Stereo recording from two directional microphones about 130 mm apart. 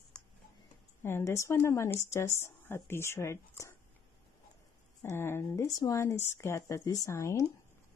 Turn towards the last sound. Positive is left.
turn(degrees=20)  # may be behind; listen again after turning